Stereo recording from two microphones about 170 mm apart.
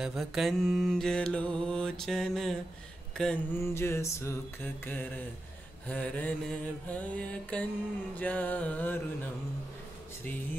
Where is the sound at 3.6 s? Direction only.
15° left (ahead or behind).